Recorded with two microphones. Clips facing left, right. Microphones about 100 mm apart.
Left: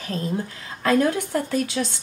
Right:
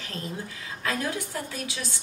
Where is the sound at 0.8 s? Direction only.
50° left (ahead or behind).